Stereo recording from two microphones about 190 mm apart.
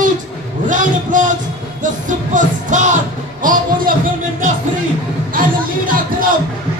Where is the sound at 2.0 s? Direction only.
40° right (ahead or behind).